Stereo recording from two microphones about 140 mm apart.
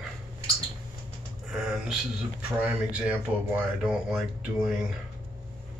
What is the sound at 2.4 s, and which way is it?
Speech, 10° right (ahead or behind).